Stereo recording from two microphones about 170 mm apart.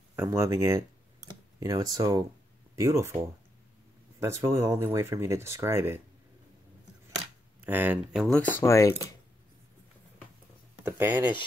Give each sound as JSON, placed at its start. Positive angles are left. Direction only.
{"t": 0.1, "sound": "speech", "side_deg": -15}
{"t": 7.6, "sound": "speech", "side_deg": -10}
{"t": 10.9, "sound": "speech", "side_deg": -15}